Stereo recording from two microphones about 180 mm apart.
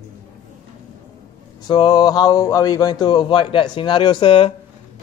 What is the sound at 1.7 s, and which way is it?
Speech, 25° left (ahead or behind).